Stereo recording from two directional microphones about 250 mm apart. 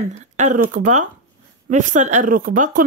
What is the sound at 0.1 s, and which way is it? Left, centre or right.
Speech, right.